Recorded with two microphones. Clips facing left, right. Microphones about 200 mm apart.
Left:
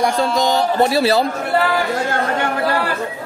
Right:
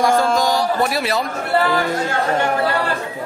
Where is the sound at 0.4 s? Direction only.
25° left (ahead or behind).